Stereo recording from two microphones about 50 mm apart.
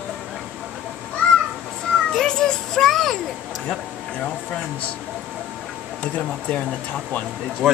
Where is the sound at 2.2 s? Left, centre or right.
Centre.